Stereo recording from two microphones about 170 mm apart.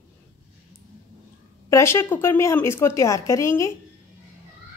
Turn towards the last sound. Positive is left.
turn(degrees=15)  # may be behind; listen again after turning